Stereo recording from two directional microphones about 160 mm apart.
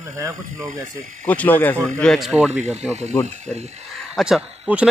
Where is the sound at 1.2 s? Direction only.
10° left (ahead or behind).